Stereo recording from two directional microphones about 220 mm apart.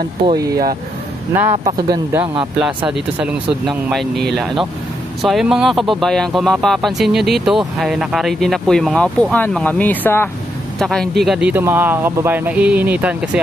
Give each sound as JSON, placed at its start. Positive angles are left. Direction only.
{"t": 0.3, "sound": "speech", "side_deg": -15}
{"t": 2.6, "sound": "speech", "side_deg": -5}